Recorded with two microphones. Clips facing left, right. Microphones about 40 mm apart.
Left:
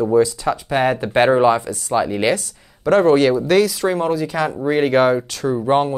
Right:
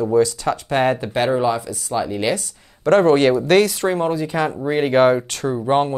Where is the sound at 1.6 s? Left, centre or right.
Centre.